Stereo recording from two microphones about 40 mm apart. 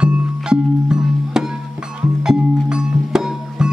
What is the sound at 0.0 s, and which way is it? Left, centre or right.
Music, right.